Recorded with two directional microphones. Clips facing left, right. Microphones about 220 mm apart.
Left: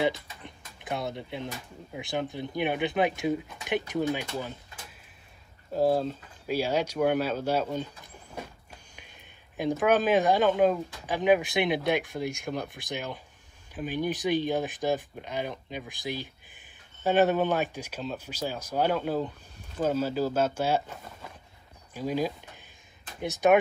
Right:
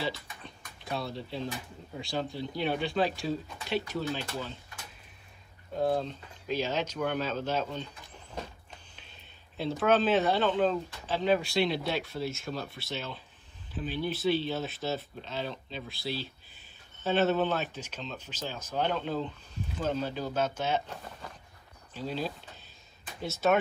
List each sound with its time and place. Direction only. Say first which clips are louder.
0.0 s a sound: left 7 dB; 20° left (ahead or behind)
2.0 s speech: left 2 dB; 20° left (ahead or behind)
5.8 s speech: left 4 dB; 5° left (ahead or behind)
8.9 s speech: left 2 dB; 15° left (ahead or behind)